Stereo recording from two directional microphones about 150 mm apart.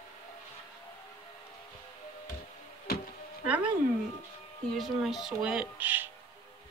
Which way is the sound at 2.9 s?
90° left.